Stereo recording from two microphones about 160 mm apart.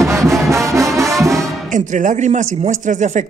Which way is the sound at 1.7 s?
50° right (ahead or behind).